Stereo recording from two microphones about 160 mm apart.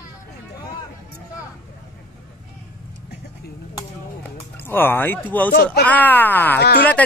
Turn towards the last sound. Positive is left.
turn(degrees=85)